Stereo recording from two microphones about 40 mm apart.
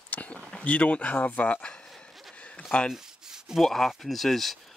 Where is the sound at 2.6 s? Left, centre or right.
Centre.